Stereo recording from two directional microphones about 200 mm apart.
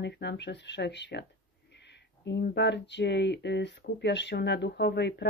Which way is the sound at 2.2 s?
55° left (ahead or behind).